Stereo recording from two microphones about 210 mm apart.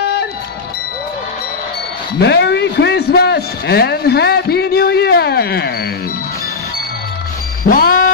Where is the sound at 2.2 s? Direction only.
55° left (ahead or behind).